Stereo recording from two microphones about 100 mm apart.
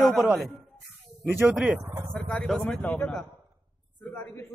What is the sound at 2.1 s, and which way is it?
A man's voice, 10° left (ahead or behind).